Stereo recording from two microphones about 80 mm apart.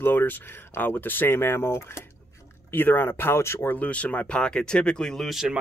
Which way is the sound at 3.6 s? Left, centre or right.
Centre.